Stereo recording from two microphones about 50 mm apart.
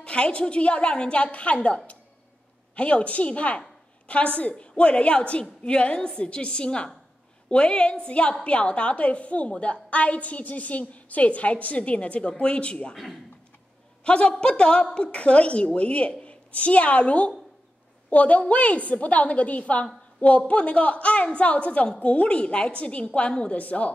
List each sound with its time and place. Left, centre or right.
0.0 s a woman's voice: left
12.9 s a man's voice: centre
14.0 s a woman's voice: centre